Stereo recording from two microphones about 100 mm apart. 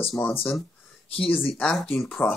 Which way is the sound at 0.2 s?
20° left (ahead or behind).